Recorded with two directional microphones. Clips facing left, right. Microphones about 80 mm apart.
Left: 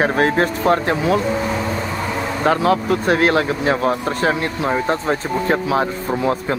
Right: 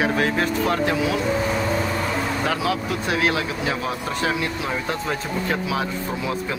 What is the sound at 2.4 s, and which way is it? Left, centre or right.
Speech, left.